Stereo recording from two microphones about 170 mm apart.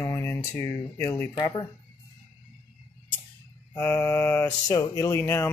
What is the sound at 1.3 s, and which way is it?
Speech, 30° left (ahead or behind).